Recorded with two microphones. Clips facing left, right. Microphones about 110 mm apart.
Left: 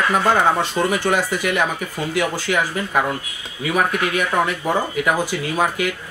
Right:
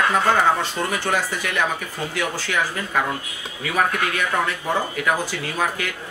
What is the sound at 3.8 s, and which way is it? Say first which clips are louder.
Speech: left 2 dB; 15° left (ahead or behind).